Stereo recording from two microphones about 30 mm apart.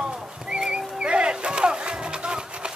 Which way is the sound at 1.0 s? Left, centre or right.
Right.